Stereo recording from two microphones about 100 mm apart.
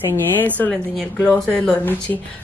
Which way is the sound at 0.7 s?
Centre (ahead or behind).